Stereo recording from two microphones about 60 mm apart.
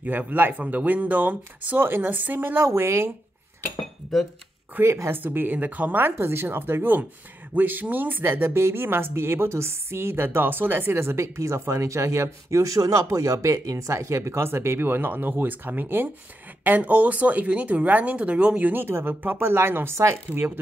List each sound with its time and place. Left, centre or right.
0.0 s speech: right
2.6 s a woman's voice: right
3.8 s dishes: centre
4.8 s a woman's voice: right
5.1 s a woman's voice: right
18.7 s a woman's voice: right
20.3 s speech: right